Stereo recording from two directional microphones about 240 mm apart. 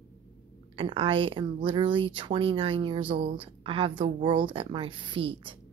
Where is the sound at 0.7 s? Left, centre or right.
Right.